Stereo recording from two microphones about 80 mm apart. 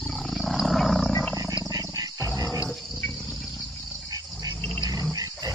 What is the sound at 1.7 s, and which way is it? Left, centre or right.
Wild animals, right.